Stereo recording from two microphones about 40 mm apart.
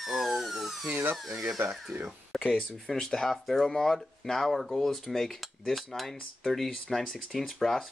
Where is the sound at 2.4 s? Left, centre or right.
Left.